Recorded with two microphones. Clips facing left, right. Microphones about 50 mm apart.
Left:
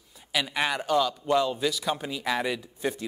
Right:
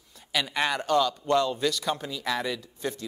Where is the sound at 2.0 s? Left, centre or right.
Centre.